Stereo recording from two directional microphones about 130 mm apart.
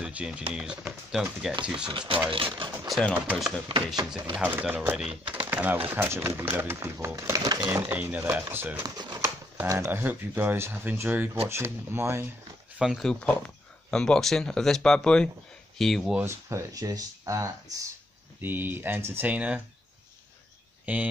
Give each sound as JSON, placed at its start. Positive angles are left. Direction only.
{"t": 0.0, "sound": "speech", "side_deg": -10}
{"t": 1.9, "sound": "speech", "side_deg": -40}
{"t": 2.9, "sound": "speech", "side_deg": 5}
{"t": 3.6, "sound": "speech", "side_deg": -35}
{"t": 4.4, "sound": "speech", "side_deg": -10}
{"t": 5.3, "sound": "a sound", "side_deg": -15}
{"t": 5.9, "sound": "speech", "side_deg": -15}
{"t": 7.9, "sound": "speech", "side_deg": -15}
{"t": 8.8, "sound": "shuffling cards", "side_deg": -30}
{"t": 9.8, "sound": "speech", "side_deg": -15}
{"t": 12.7, "sound": "speech", "side_deg": 0}
{"t": 16.2, "sound": "speech", "side_deg": -20}
{"t": 20.8, "sound": "speech", "side_deg": -10}